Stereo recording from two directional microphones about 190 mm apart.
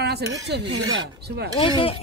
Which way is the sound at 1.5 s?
30° left (ahead or behind).